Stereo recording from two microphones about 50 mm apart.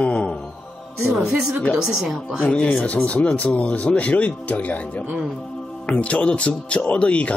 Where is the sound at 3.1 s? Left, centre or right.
Left.